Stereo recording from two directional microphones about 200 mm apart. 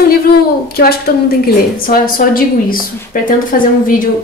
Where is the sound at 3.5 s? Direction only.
45° left (ahead or behind).